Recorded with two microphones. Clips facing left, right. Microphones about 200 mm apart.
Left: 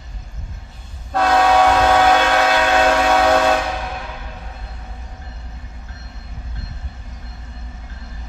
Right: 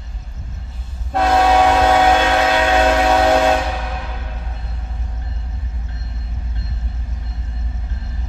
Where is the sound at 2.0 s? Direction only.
20° right (ahead or behind).